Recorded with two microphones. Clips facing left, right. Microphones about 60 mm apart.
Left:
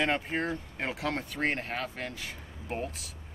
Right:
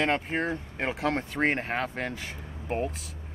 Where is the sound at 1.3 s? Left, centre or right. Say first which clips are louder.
Right 4 dB; right.